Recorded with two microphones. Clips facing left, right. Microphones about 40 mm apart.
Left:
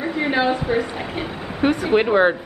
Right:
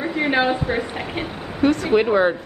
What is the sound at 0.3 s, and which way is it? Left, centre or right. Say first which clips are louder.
Speech: left 1 dB; centre.